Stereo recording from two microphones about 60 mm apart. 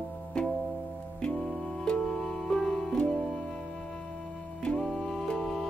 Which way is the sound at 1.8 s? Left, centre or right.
Centre.